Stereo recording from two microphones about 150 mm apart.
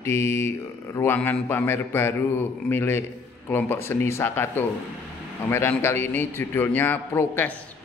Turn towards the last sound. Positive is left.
turn(degrees=15)  # may be behind; listen again after turning